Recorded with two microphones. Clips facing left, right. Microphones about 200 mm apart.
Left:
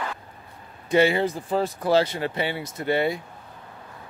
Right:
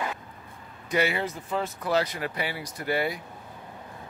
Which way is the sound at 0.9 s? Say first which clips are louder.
Left 7 dB; 30° left (ahead or behind).